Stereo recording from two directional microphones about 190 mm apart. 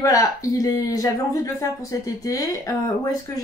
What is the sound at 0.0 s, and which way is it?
Speech, 20° left (ahead or behind).